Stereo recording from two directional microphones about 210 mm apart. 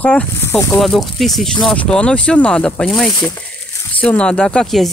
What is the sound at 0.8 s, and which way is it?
Speech, centre (ahead or behind).